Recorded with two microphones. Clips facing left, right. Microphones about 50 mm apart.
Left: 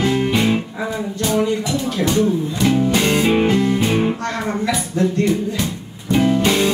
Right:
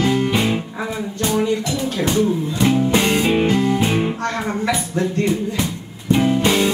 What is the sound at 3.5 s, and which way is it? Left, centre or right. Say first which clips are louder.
Music: left 1 dB; centre.